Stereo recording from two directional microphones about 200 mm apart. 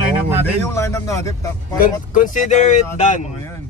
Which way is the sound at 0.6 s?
15° left (ahead or behind).